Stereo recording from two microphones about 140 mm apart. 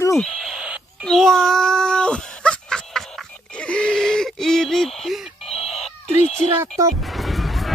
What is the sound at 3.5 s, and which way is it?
Speech, 10° left (ahead or behind).